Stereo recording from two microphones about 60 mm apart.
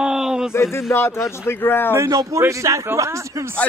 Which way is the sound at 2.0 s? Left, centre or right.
Right.